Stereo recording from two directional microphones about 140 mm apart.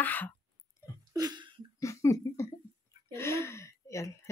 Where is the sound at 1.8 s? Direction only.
20° left (ahead or behind).